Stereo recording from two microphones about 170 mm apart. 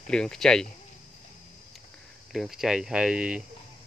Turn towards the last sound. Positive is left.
turn(degrees=-5)  # may be behind; listen again after turning